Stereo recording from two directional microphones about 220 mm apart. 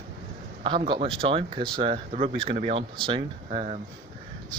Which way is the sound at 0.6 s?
20° right (ahead or behind).